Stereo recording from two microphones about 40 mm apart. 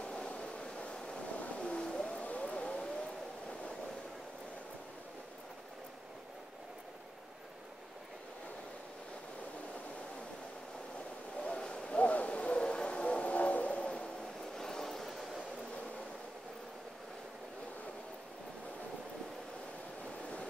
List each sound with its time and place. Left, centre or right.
0.0 s vehicle: left
1.6 s a sound: left
2.2 s siren: left
11.4 s a sound: centre
12.0 s hoot: left
14.6 s vehicle: centre